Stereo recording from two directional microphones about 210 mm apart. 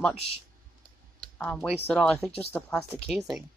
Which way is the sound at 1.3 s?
5° left (ahead or behind).